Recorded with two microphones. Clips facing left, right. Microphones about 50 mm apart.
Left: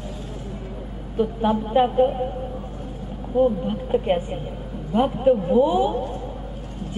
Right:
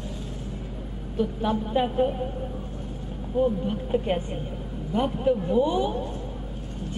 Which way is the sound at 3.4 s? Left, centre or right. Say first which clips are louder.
Left 4 dB; centre.